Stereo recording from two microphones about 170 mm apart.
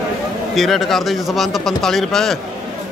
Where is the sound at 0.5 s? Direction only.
Centre (ahead or behind).